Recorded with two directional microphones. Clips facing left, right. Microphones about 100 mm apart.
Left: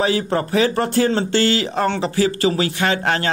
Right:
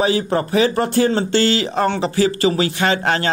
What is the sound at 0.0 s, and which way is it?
Speech, 20° right (ahead or behind).